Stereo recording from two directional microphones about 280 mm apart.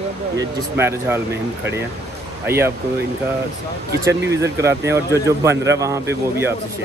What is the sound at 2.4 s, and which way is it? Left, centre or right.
Speech, centre.